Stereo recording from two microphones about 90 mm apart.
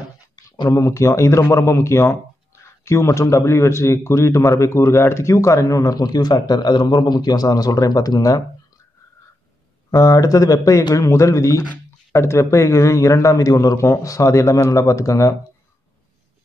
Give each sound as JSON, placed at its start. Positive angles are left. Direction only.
{"t": 0.7, "sound": "a man's voice", "side_deg": 35}
{"t": 9.8, "sound": "a man's voice", "side_deg": 40}